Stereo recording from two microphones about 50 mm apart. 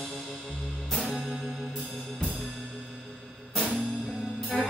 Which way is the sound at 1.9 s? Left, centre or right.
Centre.